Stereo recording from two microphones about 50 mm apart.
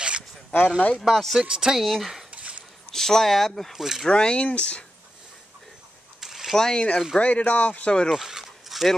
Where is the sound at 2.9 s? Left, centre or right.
Centre.